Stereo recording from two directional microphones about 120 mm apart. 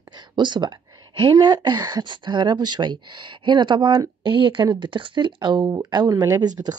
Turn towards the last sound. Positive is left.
turn(degrees=-35)  # may be behind; listen again after turning